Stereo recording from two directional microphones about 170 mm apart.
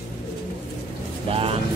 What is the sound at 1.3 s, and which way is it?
Speech, 35° right (ahead or behind).